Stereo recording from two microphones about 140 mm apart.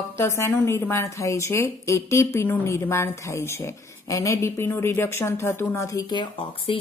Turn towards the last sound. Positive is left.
turn(degrees=40)  # may be behind; listen again after turning